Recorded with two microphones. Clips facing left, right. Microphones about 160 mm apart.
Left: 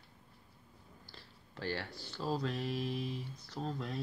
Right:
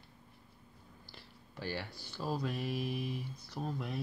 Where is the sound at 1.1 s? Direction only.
15° right (ahead or behind).